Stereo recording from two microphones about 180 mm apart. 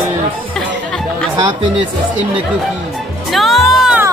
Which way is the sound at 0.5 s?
5° left (ahead or behind).